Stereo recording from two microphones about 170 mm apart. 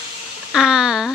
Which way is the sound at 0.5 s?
5° right (ahead or behind).